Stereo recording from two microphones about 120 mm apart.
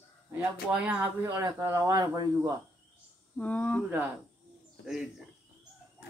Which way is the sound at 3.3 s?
10° left (ahead or behind).